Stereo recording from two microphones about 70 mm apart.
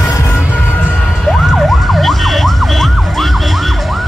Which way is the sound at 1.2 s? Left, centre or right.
Centre.